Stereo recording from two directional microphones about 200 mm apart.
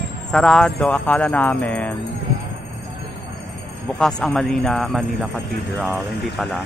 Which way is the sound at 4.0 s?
5° left (ahead or behind).